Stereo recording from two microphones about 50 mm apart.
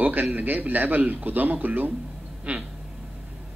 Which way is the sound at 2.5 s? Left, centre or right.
Right.